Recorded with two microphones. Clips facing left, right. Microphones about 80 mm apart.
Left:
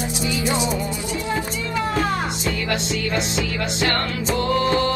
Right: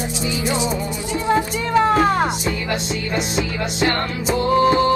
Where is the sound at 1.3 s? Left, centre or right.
Right.